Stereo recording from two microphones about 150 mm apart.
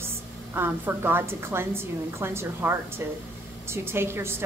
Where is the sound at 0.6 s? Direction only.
15° right (ahead or behind).